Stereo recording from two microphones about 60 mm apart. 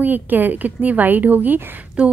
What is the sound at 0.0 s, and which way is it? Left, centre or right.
A woman's voice, right.